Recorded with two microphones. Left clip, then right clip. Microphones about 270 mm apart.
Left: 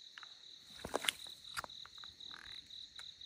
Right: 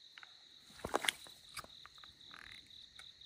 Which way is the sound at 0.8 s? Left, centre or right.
Centre.